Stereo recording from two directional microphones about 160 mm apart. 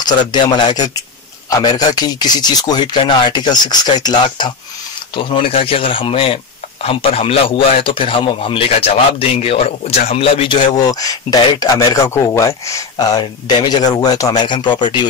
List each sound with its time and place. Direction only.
0.0 s speech: 25° left (ahead or behind)